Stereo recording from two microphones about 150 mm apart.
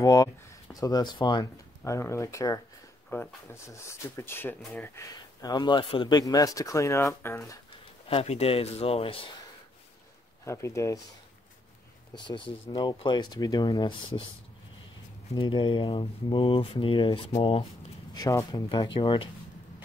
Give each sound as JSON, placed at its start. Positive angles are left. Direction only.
{"t": 0.0, "sound": "speech", "side_deg": 25}
{"t": 8.1, "sound": "speech", "side_deg": 40}
{"t": 10.4, "sound": "speech", "side_deg": 20}
{"t": 12.1, "sound": "speech", "side_deg": 35}
{"t": 15.3, "sound": "speech", "side_deg": 35}
{"t": 18.1, "sound": "speech", "side_deg": 25}